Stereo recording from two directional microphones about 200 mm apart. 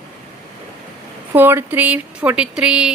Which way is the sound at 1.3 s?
10° right (ahead or behind).